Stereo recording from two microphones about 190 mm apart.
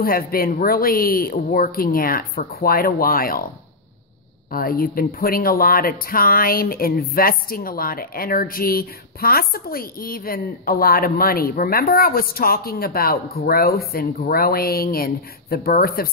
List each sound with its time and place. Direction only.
0.0 s speech: 50° left (ahead or behind)
4.5 s speech: 50° left (ahead or behind)